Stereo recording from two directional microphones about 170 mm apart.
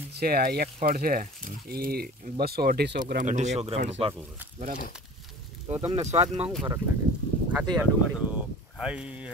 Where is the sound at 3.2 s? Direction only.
45° right (ahead or behind).